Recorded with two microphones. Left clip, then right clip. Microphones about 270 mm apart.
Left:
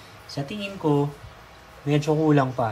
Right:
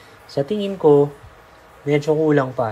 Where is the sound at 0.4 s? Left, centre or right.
Centre.